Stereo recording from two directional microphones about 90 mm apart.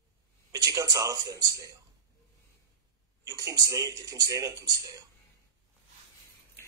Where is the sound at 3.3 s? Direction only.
40° right (ahead or behind).